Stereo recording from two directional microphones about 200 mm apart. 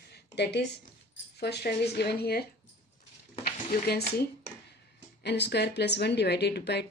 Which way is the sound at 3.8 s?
55° left (ahead or behind).